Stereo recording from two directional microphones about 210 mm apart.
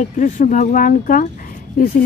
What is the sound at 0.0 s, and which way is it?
Speech, 35° left (ahead or behind).